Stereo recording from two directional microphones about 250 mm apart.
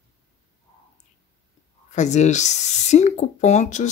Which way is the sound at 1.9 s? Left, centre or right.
Left.